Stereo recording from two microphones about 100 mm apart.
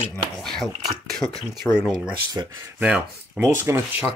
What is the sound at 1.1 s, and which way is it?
Speech, 5° left (ahead or behind).